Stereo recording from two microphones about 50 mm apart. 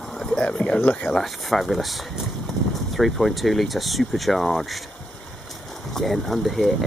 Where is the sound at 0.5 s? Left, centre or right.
Left.